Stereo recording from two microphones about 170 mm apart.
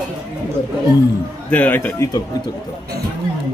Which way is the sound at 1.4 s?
10° left (ahead or behind).